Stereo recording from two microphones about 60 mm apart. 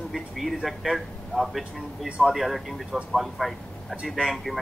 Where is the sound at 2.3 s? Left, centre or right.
Centre.